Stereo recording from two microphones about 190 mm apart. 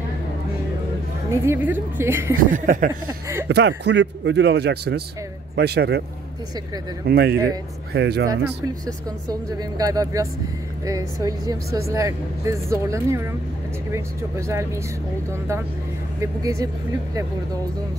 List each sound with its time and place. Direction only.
1.3 s speech: 15° right (ahead or behind)
2.5 s a sound: 45° right (ahead or behind)
3.4 s a man's voice: 65° right (ahead or behind)
7.1 s a man's voice: 55° right (ahead or behind)
8.8 s speech: 20° right (ahead or behind)
16.2 s speech: 15° right (ahead or behind)